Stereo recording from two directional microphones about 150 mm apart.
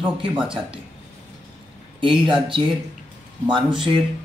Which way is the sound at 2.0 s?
35° right (ahead or behind).